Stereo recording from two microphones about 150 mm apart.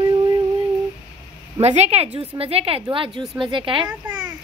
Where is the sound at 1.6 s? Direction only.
45° right (ahead or behind).